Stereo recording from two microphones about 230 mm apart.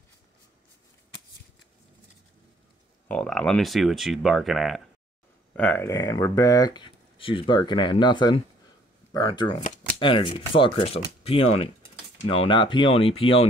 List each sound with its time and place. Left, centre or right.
3.1 s speech: centre; by 13.5 s left